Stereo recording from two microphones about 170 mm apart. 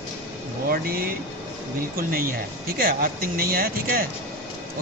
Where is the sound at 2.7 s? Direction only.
60° right (ahead or behind).